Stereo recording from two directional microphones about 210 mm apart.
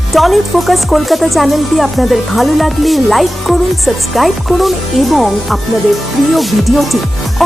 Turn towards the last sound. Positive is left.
turn(degrees=0)  # may be behind; listen again after turning